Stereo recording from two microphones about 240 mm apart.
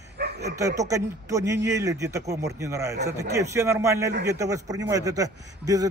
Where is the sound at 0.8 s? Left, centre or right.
Centre.